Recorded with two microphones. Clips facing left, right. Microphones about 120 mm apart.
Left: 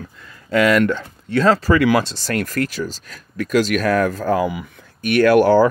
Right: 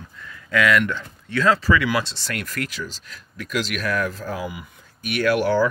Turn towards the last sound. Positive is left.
turn(degrees=45)  # may be behind; listen again after turning